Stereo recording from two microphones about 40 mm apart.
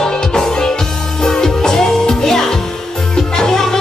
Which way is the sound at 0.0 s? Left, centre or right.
Centre.